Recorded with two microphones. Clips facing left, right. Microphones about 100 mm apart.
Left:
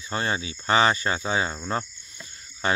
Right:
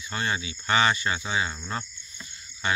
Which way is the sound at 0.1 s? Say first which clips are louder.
Left 2 dB; 35° left (ahead or behind).